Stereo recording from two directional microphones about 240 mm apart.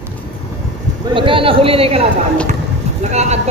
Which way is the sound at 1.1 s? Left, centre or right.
Right.